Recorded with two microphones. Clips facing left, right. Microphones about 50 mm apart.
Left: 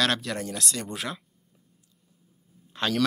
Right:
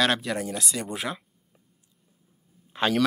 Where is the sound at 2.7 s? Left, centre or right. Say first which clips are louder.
Right 3 dB; centre.